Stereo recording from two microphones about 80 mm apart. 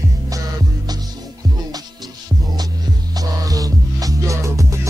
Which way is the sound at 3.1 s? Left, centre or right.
Right.